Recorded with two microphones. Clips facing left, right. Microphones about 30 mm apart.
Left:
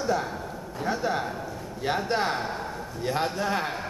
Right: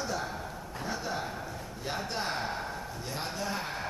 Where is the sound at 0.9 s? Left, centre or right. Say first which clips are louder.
Left 8 dB; left.